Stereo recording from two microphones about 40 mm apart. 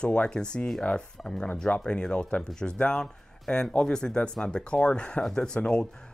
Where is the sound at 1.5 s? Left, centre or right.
Left.